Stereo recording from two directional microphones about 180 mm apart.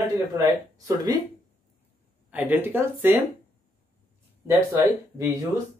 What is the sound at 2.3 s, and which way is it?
Speech, 10° right (ahead or behind).